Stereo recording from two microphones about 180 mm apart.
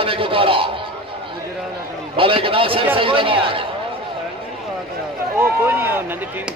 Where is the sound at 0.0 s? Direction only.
30° right (ahead or behind).